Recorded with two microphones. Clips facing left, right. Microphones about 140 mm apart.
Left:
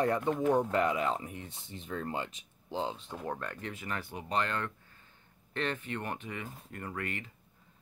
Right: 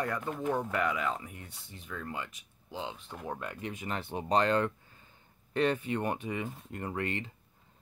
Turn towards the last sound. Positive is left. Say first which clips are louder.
# right 4 dB
turn(degrees=-25)  # may be behind; listen again after turning